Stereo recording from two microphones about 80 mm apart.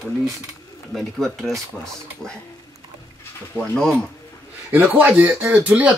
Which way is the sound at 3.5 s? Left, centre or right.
Centre.